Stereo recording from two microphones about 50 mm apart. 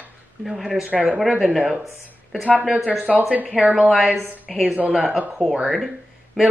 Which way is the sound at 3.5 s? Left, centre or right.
Right.